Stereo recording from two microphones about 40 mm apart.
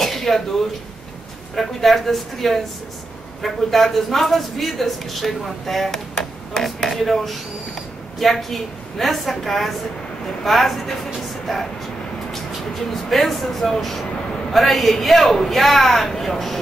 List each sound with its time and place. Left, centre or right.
0.0 s throat clearing: centre
1.5 s a man's voice: centre
12.7 s a man's voice: centre